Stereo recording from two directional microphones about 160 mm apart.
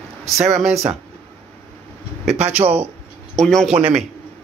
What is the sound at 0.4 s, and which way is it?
Speech, 45° right (ahead or behind).